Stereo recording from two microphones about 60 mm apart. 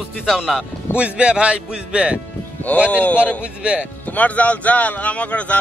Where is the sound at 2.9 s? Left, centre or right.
Left.